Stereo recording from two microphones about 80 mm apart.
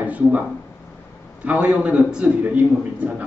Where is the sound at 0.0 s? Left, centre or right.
Centre.